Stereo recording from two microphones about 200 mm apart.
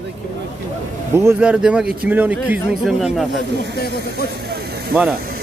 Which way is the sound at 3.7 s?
50° left (ahead or behind).